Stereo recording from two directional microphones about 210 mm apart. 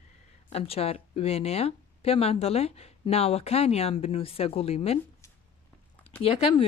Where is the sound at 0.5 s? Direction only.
30° left (ahead or behind).